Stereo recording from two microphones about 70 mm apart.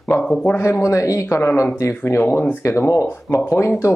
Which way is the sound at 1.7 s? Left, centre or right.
Left.